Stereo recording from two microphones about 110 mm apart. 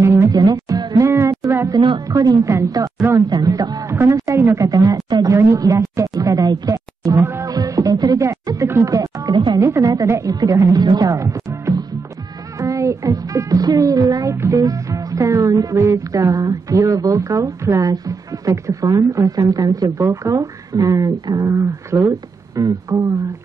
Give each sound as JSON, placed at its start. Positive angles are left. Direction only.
{"t": 0.0, "sound": "music", "side_deg": -25}
{"t": 1.7, "sound": "speech", "side_deg": -45}
{"t": 2.0, "sound": "a woman's voice", "side_deg": -35}
{"t": 3.9, "sound": "a woman's voice", "side_deg": -25}
{"t": 7.2, "sound": "a woman's voice", "side_deg": -20}
{"t": 7.4, "sound": "music", "side_deg": -35}
{"t": 9.6, "sound": "a child's voice", "side_deg": -30}